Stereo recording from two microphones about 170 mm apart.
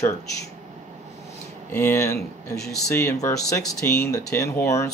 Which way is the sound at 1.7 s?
15° left (ahead or behind).